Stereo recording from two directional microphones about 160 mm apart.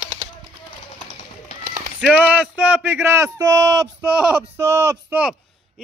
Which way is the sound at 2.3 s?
10° right (ahead or behind).